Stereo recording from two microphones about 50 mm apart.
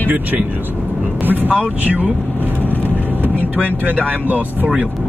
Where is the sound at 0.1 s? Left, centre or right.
Right.